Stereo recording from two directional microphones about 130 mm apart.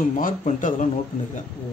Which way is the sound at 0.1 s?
90° left.